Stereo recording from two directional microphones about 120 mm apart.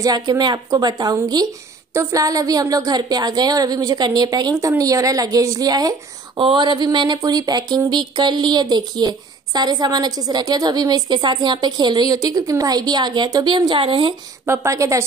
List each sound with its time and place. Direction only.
0.0 s speech: 35° right (ahead or behind)
14.4 s a woman's voice: 25° right (ahead or behind)